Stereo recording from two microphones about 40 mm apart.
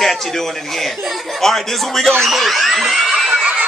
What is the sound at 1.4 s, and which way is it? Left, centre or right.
A man's voice, centre.